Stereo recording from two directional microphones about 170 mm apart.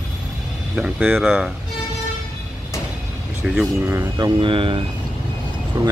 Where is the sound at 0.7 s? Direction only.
5° right (ahead or behind).